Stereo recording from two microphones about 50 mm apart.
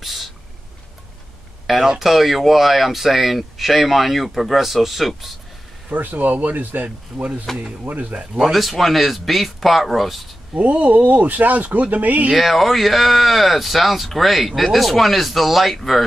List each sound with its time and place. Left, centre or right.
0.0 s a sound: centre
1.7 s speech: centre
5.9 s speech: right
8.4 s speech: centre
10.5 s speech: right
12.3 s speech: centre